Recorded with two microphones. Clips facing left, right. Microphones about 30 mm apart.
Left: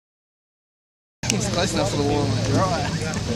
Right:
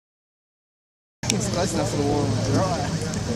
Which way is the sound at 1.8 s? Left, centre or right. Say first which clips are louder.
Left 1 dB; left.